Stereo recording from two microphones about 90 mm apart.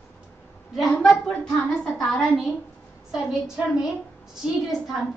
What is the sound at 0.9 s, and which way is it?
Speech, 5° left (ahead or behind).